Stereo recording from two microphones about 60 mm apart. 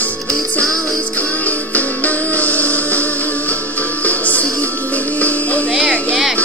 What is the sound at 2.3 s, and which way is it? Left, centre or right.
Music, left.